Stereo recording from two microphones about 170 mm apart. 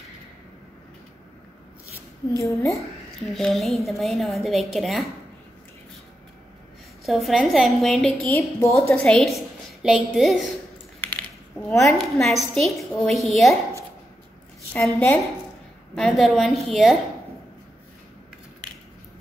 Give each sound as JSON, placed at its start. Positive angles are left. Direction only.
{"t": 2.3, "sound": "a woman's voice", "side_deg": 15}
{"t": 3.3, "sound": "a woman's voice", "side_deg": 0}
{"t": 7.1, "sound": "a woman's voice", "side_deg": 0}
{"t": 8.4, "sound": "a woman's voice", "side_deg": 15}
{"t": 8.9, "sound": "a woman's voice", "side_deg": 5}
{"t": 11.0, "sound": "a sound", "side_deg": 10}
{"t": 12.0, "sound": "a woman's voice", "side_deg": 0}
{"t": 14.7, "sound": "a woman's voice", "side_deg": 15}